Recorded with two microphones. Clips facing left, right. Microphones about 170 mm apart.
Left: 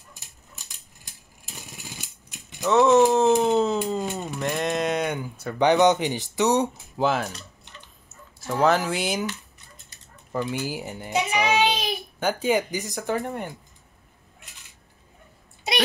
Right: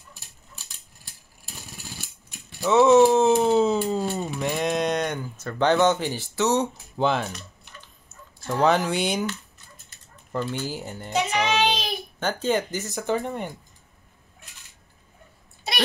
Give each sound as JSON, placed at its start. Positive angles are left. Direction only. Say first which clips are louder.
{"t": 2.6, "sound": "a sound", "louder": "right 1 dB", "side_deg": 0}
{"t": 4.2, "sound": "speech", "louder": "right 1 dB", "side_deg": 0}
{"t": 7.0, "sound": "speech", "louder": "even", "side_deg": 5}
{"t": 8.4, "sound": "speech", "louder": "even", "side_deg": 0}
{"t": 10.3, "sound": "a child's voice", "louder": "left 1 dB", "side_deg": 10}